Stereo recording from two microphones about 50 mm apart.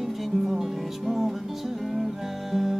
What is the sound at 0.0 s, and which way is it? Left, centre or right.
Music, centre.